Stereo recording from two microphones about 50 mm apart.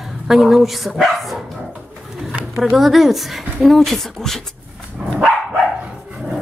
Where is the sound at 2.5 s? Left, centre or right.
Centre.